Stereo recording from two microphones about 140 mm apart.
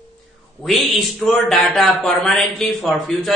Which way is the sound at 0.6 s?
Centre (ahead or behind).